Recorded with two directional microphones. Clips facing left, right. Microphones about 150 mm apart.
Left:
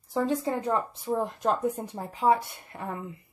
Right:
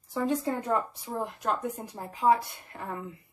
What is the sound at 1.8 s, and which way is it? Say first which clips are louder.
Speech: left 1 dB; 25° left (ahead or behind).